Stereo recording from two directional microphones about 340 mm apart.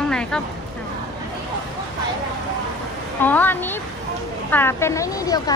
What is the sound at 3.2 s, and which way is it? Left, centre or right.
A woman's voice, centre.